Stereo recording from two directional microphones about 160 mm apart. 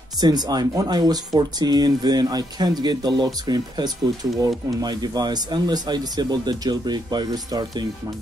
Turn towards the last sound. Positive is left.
turn(degrees=-25)  # may be behind; listen again after turning